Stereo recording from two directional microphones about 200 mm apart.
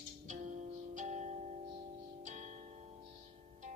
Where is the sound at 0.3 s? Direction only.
40° right (ahead or behind).